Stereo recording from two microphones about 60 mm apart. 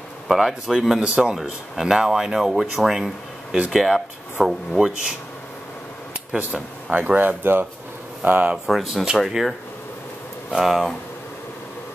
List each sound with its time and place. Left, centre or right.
0.3 s speech: centre
0.9 s speech: centre
6.3 s speech: right
8.6 s speech: centre